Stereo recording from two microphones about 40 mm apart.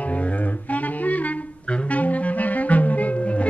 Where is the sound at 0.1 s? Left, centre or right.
Left.